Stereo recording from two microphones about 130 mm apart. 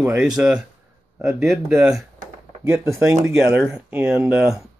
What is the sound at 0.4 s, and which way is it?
Speech, 10° right (ahead or behind).